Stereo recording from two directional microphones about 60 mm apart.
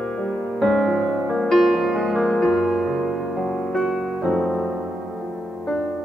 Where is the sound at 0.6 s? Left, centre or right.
Centre.